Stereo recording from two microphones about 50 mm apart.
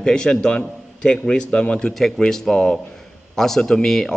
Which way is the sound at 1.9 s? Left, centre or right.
Centre.